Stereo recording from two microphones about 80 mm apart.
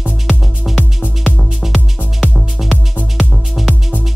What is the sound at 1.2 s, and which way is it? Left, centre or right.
Music, centre.